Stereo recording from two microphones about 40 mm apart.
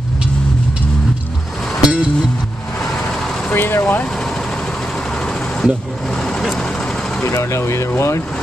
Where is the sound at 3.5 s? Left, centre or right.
Left.